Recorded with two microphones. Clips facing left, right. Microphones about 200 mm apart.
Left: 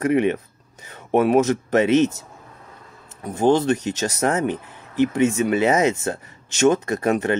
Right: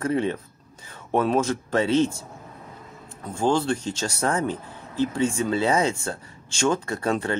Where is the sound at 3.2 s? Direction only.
20° left (ahead or behind).